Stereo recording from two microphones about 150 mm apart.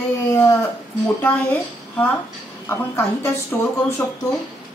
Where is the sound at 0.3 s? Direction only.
25° left (ahead or behind).